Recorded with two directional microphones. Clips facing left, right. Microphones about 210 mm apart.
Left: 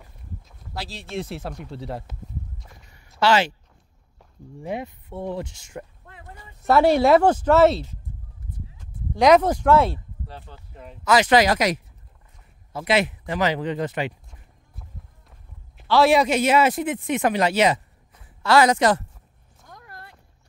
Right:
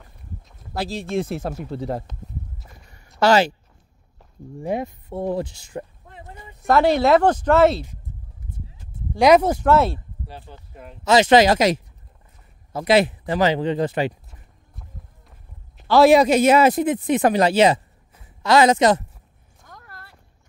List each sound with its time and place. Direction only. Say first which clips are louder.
0.7 s speech: right 7 dB; 45° right (ahead or behind)
2.6 s a sound: right 1 dB; centre (ahead or behind)
3.2 s speech: right 3 dB; 40° right (ahead or behind)
4.6 s a sound: right 5 dB; 40° right (ahead or behind); by 6.7 s 20° right (ahead or behind)
6.7 s speech: even; 10° left (ahead or behind)
9.1 s speech: right 1 dB; 10° right (ahead or behind)
11.1 s speech: right 3 dB; 25° right (ahead or behind)
12.7 s speech: right 5 dB; 35° right (ahead or behind)
15.9 s speech: right 4 dB; 40° right (ahead or behind)
18.1 s speech: right 1 dB; 20° right (ahead or behind)
19.7 s a sound: left 1 dB; 20° left (ahead or behind)